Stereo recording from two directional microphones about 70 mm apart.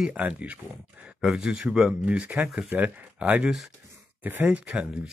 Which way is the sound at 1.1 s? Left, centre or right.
Centre.